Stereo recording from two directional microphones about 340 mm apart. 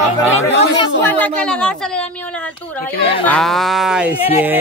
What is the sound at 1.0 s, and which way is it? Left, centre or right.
Speech, centre.